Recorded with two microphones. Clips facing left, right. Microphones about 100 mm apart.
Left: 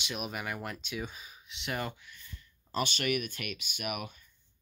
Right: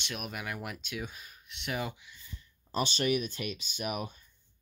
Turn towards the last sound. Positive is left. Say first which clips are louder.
# right 2 dB
turn(degrees=-30)  # may be behind; listen again after turning